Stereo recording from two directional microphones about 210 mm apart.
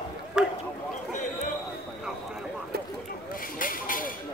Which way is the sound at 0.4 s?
5° right (ahead or behind).